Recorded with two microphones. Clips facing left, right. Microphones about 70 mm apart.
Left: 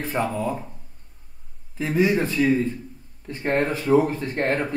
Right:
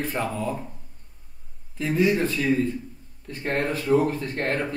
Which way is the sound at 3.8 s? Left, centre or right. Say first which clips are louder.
Left 2 dB; left.